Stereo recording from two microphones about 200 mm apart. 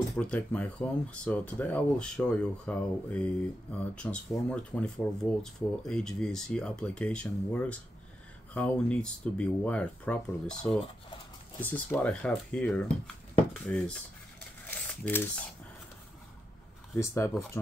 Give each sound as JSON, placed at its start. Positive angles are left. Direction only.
{"t": 0.1, "sound": "speech", "side_deg": 5}
{"t": 11.6, "sound": "speech", "side_deg": 10}
{"t": 14.7, "sound": "a sound", "side_deg": 10}
{"t": 16.9, "sound": "speech", "side_deg": 15}